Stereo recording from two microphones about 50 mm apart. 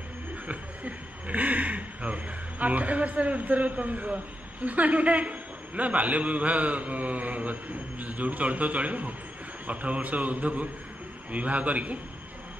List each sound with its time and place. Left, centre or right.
0.5 s a man's voice: right